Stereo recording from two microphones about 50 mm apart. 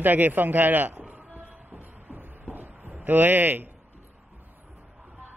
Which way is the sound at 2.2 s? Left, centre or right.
Right.